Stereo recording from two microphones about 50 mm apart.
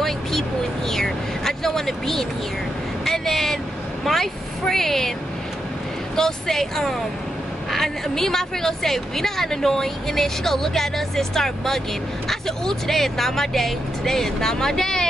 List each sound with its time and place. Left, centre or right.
0.0 s vehicle: centre
4.0 s speech: centre
6.1 s a woman's voice: centre